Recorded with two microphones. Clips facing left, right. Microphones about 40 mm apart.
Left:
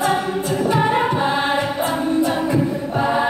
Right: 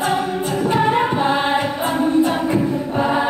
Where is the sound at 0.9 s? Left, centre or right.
Centre.